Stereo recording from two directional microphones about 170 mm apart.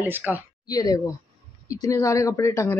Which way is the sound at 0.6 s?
20° left (ahead or behind).